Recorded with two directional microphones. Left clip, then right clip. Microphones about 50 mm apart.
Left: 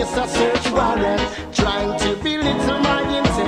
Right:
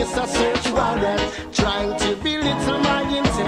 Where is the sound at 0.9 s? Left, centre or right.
Left.